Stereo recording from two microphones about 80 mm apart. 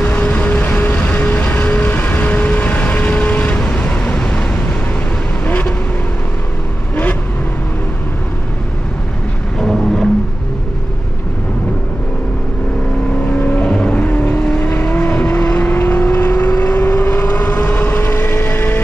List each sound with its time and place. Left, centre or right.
0.0 s vehicle: left
9.6 s a sound: centre
13.2 s vehicle: left
14.6 s vehicle: left